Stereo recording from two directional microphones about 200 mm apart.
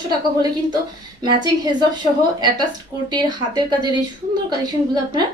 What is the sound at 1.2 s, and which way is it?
Speech, 20° right (ahead or behind).